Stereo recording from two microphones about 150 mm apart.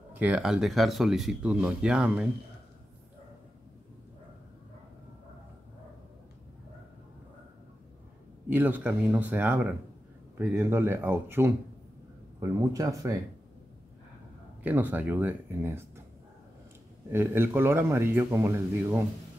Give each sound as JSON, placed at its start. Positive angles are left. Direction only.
{"t": 0.1, "sound": "speech", "side_deg": -10}
{"t": 8.5, "sound": "a man's voice", "side_deg": -10}
{"t": 14.6, "sound": "a man's voice", "side_deg": -10}
{"t": 17.1, "sound": "a man's voice", "side_deg": -15}